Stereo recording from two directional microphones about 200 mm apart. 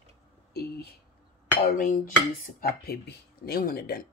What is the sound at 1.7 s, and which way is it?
Speech, 45° left (ahead or behind).